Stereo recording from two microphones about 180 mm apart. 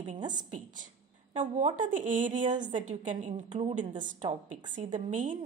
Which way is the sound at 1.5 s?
45° right (ahead or behind).